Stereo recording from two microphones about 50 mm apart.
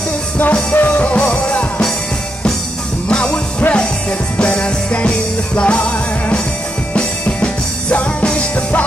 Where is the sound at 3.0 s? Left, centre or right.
Left.